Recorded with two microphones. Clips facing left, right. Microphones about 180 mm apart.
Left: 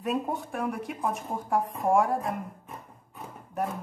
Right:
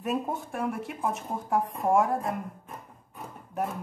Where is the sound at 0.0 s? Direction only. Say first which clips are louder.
Left 1 dB; centre (ahead or behind).